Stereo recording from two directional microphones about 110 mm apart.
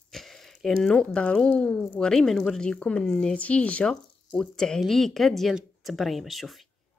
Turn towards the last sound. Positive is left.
turn(degrees=0)  # may be behind; listen again after turning